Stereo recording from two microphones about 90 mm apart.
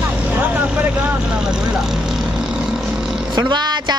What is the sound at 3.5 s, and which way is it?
Speech, 55° right (ahead or behind).